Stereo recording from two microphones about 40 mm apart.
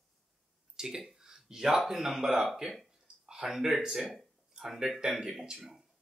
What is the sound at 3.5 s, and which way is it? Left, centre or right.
A man's voice, centre.